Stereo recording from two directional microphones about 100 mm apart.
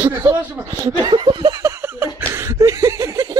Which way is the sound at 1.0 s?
45° right (ahead or behind).